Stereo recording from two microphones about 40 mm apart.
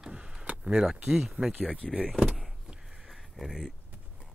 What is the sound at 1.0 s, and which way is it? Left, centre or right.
A man's voice, centre.